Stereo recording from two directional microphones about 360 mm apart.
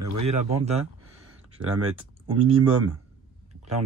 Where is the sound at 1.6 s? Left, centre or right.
Right.